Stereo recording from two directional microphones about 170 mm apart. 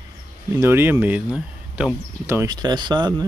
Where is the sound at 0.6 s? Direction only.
15° right (ahead or behind).